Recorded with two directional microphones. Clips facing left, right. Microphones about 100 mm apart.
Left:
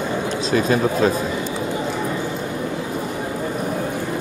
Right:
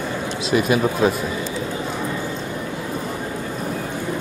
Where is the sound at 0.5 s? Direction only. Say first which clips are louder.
Even; 10° right (ahead or behind).